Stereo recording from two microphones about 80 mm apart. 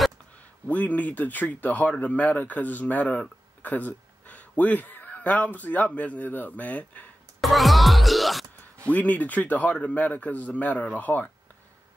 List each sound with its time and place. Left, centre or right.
0.7 s speech: centre
7.3 s music: centre
8.8 s speech: centre